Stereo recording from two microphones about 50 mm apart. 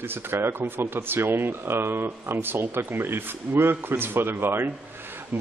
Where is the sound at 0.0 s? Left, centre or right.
Right.